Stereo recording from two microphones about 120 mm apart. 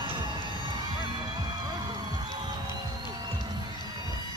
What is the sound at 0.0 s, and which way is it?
Music, 40° right (ahead or behind).